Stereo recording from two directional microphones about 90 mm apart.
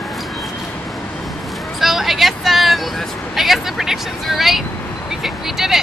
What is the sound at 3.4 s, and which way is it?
Speech, centre (ahead or behind).